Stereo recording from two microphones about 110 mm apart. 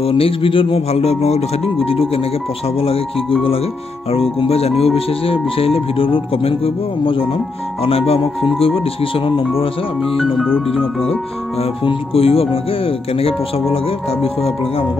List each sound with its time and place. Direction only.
0.0 s speech: 55° left (ahead or behind)
10.0 s speech: centre (ahead or behind)
11.1 s speech: 65° left (ahead or behind)